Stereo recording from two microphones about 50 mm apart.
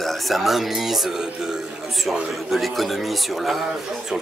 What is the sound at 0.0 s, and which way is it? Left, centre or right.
Speech, centre.